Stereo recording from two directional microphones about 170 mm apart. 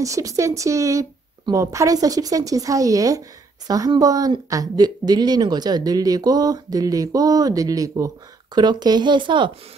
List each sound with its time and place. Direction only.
0.0 s a woman's voice: 20° right (ahead or behind)